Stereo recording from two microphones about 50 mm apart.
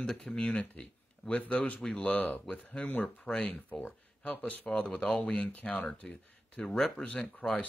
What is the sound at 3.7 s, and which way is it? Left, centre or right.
Speech, left.